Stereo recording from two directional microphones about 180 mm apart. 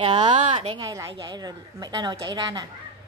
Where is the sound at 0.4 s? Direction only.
40° right (ahead or behind).